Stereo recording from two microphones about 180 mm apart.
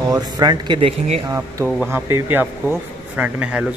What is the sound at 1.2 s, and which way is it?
A man's voice, 15° right (ahead or behind).